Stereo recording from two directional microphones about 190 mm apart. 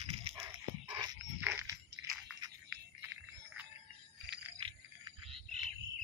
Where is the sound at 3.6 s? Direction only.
5° right (ahead or behind).